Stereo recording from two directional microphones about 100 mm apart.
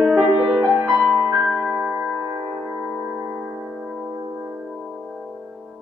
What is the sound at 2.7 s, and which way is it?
Music, 5° right (ahead or behind).